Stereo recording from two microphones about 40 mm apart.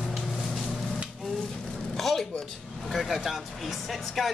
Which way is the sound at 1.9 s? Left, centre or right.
Centre.